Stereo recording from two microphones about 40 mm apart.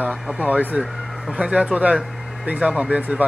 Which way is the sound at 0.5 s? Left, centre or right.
Right.